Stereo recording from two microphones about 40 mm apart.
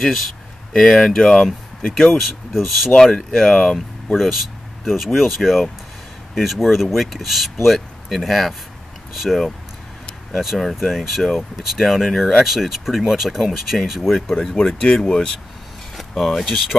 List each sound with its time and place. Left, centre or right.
0.0 s speech: centre
2.0 s speech: centre
3.0 s speech: centre
4.2 s speech: centre
12.4 s speech: centre; by 15.3 s left
16.0 s speech: centre